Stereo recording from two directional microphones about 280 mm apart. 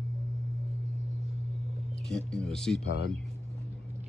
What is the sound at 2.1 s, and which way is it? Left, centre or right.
Speech, centre.